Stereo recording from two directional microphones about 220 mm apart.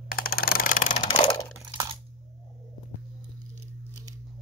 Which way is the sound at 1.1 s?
20° left (ahead or behind).